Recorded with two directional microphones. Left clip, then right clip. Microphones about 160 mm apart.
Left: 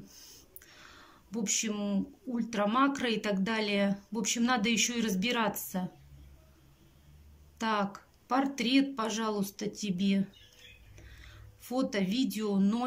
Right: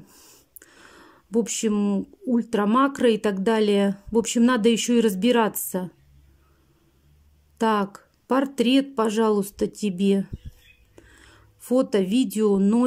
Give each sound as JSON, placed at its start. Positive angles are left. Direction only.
{"t": 0.1, "sound": "speech", "side_deg": -40}
{"t": 7.5, "sound": "speech", "side_deg": -45}